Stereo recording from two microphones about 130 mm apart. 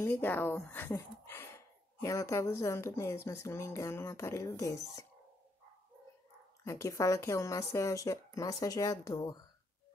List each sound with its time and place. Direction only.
0.0 s speech: 15° left (ahead or behind)
6.6 s speech: 25° left (ahead or behind)